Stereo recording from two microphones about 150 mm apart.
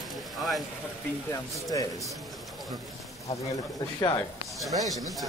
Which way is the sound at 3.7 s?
25° left (ahead or behind).